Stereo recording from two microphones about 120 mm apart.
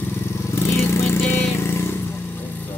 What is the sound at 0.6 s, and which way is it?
Vehicle, 20° left (ahead or behind).